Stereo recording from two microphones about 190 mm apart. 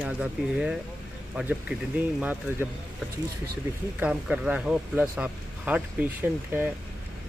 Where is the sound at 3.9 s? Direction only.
5° right (ahead or behind).